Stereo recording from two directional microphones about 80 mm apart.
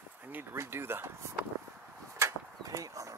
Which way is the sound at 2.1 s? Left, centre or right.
Right.